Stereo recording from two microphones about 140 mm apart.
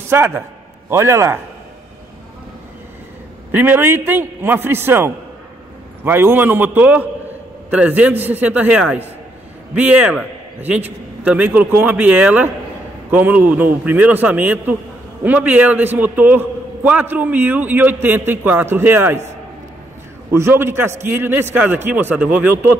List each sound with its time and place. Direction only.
0.1 s a man's voice: 15° right (ahead or behind)
3.5 s a man's voice: 15° right (ahead or behind)
20.2 s a man's voice: 15° right (ahead or behind)